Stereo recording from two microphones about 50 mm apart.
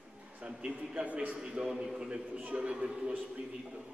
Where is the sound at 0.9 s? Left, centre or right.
Right.